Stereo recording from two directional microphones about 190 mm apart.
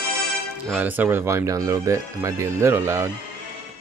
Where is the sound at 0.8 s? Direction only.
10° right (ahead or behind).